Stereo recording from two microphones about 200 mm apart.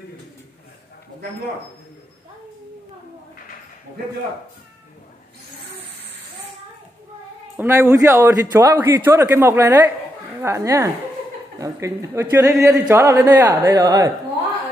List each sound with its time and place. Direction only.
7.5 s a man's voice: 10° right (ahead or behind)